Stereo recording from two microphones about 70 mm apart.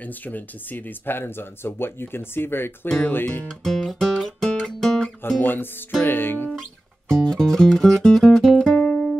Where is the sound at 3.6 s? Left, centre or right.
Centre.